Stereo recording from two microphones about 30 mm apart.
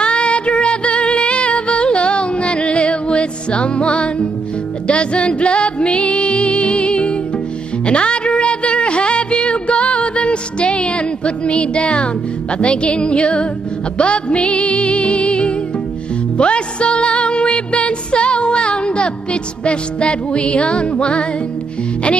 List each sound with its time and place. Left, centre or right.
0.0 s music: left